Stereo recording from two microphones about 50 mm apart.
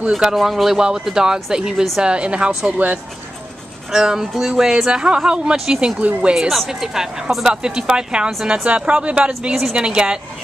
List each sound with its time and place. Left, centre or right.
0.2 s a woman's voice: centre; by 3.0 s right
3.9 s speech: centre
5.9 s a woman's voice: right
6.3 s a woman's voice: centre